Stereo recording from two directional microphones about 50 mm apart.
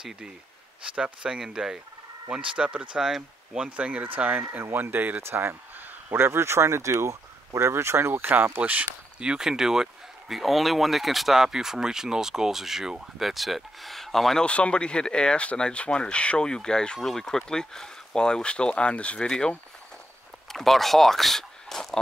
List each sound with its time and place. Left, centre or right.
0.8 s speech: right
2.3 s speech: right
3.0 s speech: centre
3.6 s speech: right
4.4 s speech: right
5.2 s a sound: right
6.1 s speech: right
9.2 s speech: centre
14.4 s speech: left; by 21.8 s centre